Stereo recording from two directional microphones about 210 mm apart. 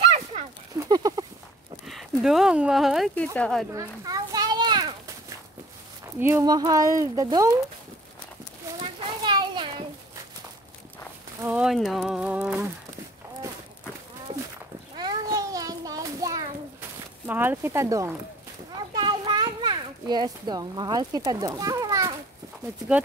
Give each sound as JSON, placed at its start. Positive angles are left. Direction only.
{"t": 0.0, "sound": "a sound", "side_deg": -25}
{"t": 1.9, "sound": "speech", "side_deg": 0}
{"t": 3.7, "sound": "children playing", "side_deg": -15}
{"t": 6.1, "sound": "speech", "side_deg": -10}
{"t": 8.8, "sound": "children playing", "side_deg": -20}
{"t": 11.4, "sound": "speech", "side_deg": -5}
{"t": 15.0, "sound": "child singing", "side_deg": -15}
{"t": 17.3, "sound": "speech", "side_deg": -10}
{"t": 18.9, "sound": "children playing", "side_deg": -20}